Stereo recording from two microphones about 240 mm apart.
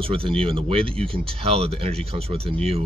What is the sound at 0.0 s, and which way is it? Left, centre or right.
Speech, right.